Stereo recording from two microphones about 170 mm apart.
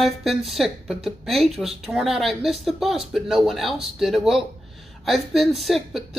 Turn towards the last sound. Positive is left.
turn(degrees=0)  # may be behind; listen again after turning